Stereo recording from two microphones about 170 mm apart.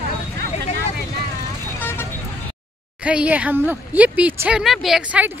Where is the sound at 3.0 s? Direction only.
5° right (ahead or behind).